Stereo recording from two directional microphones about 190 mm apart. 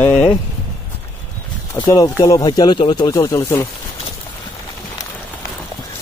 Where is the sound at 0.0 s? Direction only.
10° left (ahead or behind).